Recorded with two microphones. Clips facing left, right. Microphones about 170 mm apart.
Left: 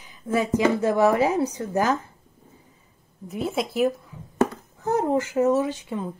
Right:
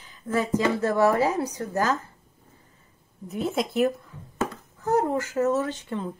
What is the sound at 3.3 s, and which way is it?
Speech, centre (ahead or behind).